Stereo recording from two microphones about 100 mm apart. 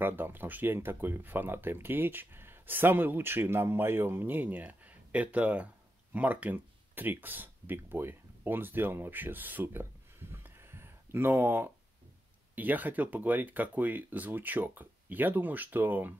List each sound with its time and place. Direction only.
0.0 s speech: 20° right (ahead or behind)